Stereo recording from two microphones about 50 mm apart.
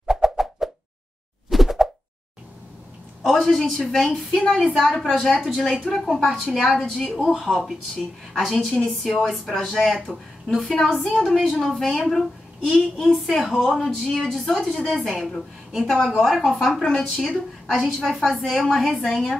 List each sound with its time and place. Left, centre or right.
0.0 s plop: centre
3.3 s a woman's voice: centre
9.5 s a woman's voice: centre